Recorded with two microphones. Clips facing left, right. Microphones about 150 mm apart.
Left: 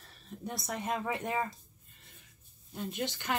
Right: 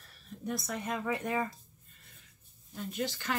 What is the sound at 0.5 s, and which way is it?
Speech, 25° left (ahead or behind).